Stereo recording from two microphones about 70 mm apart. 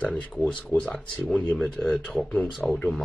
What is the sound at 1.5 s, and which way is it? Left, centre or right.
Speech, centre.